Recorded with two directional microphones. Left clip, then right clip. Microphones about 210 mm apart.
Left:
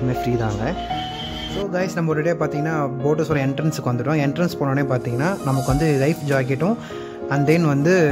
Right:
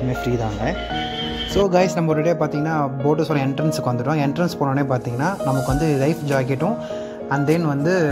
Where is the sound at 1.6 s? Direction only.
5° right (ahead or behind).